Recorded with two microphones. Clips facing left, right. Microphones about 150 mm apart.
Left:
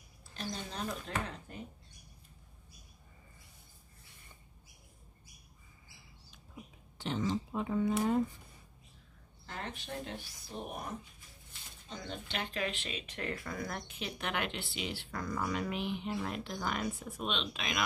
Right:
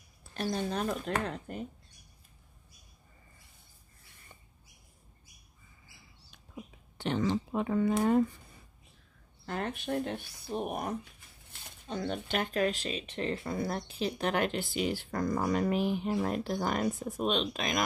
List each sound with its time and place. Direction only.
0.3 s speech: 55° right (ahead or behind)
7.0 s speech: 65° right (ahead or behind)
9.5 s speech: 55° right (ahead or behind)